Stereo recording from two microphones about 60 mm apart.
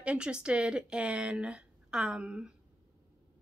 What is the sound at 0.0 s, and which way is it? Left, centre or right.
Speech, centre.